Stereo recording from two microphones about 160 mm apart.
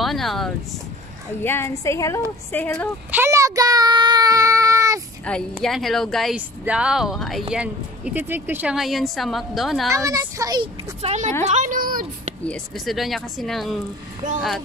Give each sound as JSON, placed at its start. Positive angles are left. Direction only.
{"t": 0.0, "sound": "vehicle", "side_deg": 0}
{"t": 1.4, "sound": "a woman's voice", "side_deg": 15}
{"t": 3.1, "sound": "child singing", "side_deg": -15}
{"t": 5.3, "sound": "a woman's voice", "side_deg": 5}
{"t": 9.8, "sound": "speech", "side_deg": -20}
{"t": 11.0, "sound": "a woman's voice", "side_deg": -45}
{"t": 11.4, "sound": "a sound", "side_deg": -50}
{"t": 12.4, "sound": "speech", "side_deg": 0}